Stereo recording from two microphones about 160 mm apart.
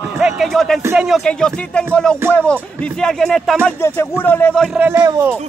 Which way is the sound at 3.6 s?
15° left (ahead or behind).